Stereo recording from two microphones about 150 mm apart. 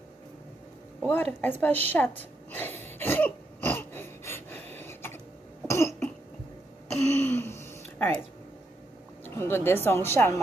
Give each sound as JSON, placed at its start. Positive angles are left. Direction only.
{"t": 1.0, "sound": "a woman's voice", "side_deg": 10}
{"t": 1.9, "sound": "throat clearing", "side_deg": 10}
{"t": 5.7, "sound": "cough", "side_deg": 20}
{"t": 7.1, "sound": "a sound", "side_deg": 15}
{"t": 9.2, "sound": "a woman's voice", "side_deg": 15}